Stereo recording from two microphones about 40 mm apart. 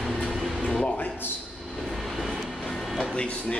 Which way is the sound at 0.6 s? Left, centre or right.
Left.